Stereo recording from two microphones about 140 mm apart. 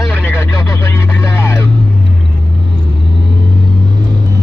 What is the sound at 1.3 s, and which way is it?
Vehicle, 20° left (ahead or behind).